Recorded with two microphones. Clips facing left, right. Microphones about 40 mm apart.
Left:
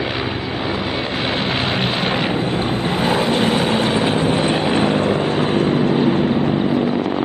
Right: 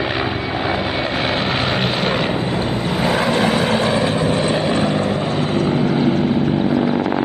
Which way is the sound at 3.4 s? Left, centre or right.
Right.